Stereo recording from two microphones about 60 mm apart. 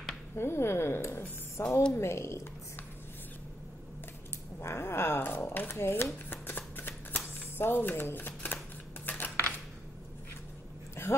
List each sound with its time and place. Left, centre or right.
0.4 s speech: left
4.6 s speech: left
6.3 s shuffling cards: left
9.0 s dishes: left
11.0 s a sound: left